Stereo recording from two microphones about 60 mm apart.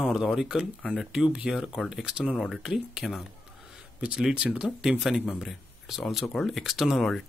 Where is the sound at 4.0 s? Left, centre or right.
Centre.